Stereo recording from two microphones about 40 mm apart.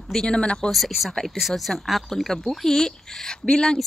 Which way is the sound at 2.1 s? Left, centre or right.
Centre.